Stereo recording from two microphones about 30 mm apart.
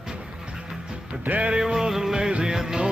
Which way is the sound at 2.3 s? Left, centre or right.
Right.